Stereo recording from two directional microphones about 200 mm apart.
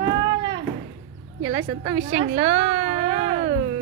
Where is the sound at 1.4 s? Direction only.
60° right (ahead or behind).